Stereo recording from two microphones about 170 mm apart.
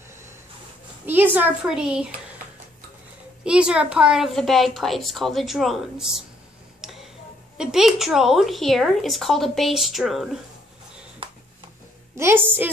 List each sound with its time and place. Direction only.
1.0 s a woman's voice: 10° right (ahead or behind)
3.4 s a woman's voice: 5° right (ahead or behind)
6.8 s tick-tock: centre (ahead or behind)
7.5 s a woman's voice: 5° right (ahead or behind)
11.2 s a sound: 30° right (ahead or behind)
12.2 s a woman's voice: 15° right (ahead or behind)